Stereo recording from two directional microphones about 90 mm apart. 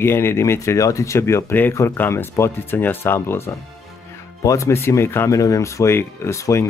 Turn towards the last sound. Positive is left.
turn(degrees=35)  # may be behind; listen again after turning